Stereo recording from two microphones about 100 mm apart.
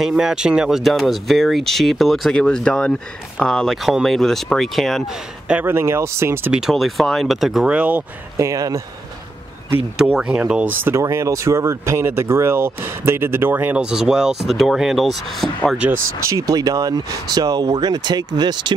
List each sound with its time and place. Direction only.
0.0 s speech: 5° right (ahead or behind)
5.5 s speech: 20° right (ahead or behind)
6.5 s speech: centre (ahead or behind)
7.6 s speech: 15° right (ahead or behind)
8.4 s speech: 35° right (ahead or behind)
10.1 s speech: 15° right (ahead or behind); by 15.7 s centre (ahead or behind)
15.9 s speech: 35° right (ahead or behind); by 18.7 s 50° right (ahead or behind)